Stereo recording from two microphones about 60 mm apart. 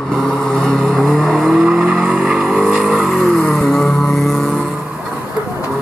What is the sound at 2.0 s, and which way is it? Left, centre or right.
Vehicle, right.